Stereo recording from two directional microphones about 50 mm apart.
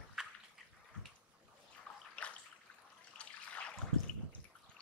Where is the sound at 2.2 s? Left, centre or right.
Left.